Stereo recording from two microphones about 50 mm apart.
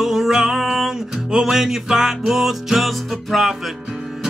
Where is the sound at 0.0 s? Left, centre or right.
Centre.